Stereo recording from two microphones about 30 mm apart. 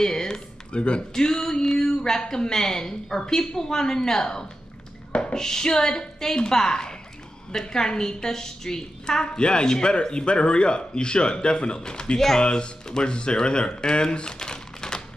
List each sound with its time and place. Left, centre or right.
0.0 s a sound: centre
0.7 s speech: left
1.1 s a woman's voice: centre
9.4 s speech: left